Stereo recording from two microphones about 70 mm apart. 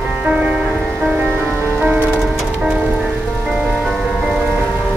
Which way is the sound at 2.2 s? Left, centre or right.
Centre.